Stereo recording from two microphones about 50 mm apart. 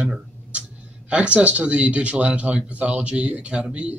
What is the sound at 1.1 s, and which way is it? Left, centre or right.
Speech, right.